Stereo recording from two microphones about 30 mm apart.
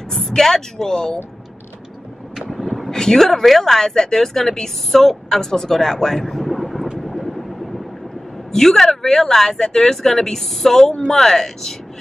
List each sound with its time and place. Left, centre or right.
0.3 s speech: centre
0.9 s speech: left
2.5 s vehicle: centre
2.9 s speech: centre
7.0 s vehicle: centre
8.5 s speech: centre